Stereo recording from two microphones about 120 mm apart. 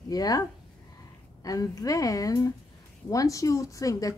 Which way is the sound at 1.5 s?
30° left (ahead or behind).